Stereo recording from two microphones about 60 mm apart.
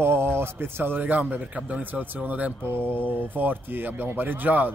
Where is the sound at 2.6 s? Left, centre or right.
Right.